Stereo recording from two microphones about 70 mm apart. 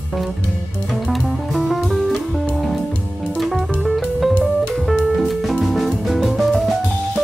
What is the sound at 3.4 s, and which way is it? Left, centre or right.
Music, centre.